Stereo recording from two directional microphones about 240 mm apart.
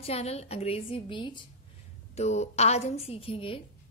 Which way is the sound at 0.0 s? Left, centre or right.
Left.